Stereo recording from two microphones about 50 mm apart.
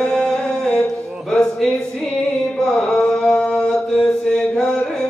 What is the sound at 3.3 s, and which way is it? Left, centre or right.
Mantra, centre.